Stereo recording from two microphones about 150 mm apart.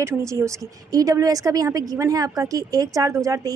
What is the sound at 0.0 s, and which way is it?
A woman's voice, 20° right (ahead or behind).